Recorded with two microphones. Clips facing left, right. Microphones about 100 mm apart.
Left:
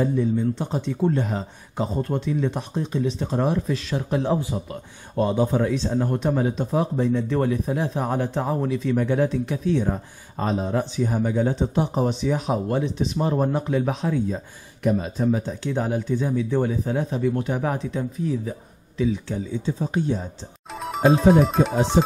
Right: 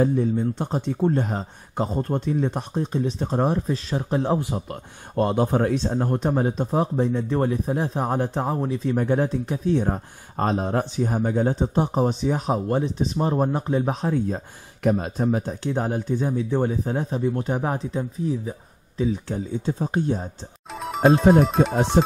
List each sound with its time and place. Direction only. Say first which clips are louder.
0.0 s speech: right 1 dB; 40° right (ahead or behind)
5.1 s speech: even; 55° right (ahead or behind)
6.1 s speech: even; 40° right (ahead or behind)
14.9 s speech: even; 55° right (ahead or behind); by 18.0 s 30° right (ahead or behind)
19.2 s speech: even; 45° right (ahead or behind)
20.7 s speech: right 1 dB; centre (ahead or behind)